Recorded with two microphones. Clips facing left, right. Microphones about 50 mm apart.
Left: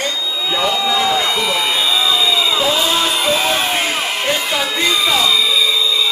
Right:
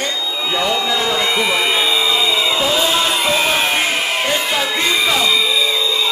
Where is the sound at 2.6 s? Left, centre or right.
Centre.